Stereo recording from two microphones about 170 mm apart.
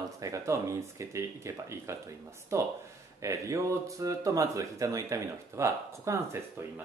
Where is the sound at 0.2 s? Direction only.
20° right (ahead or behind).